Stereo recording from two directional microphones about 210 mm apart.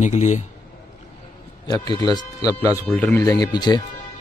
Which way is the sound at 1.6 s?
20° left (ahead or behind).